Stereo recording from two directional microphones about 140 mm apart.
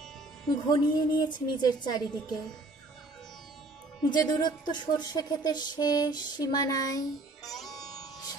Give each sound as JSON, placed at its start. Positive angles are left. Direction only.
{"t": 0.5, "sound": "a woman's voice", "side_deg": 30}
{"t": 4.0, "sound": "speech", "side_deg": 30}
{"t": 7.4, "sound": "music", "side_deg": 0}
{"t": 8.0, "sound": "music", "side_deg": 30}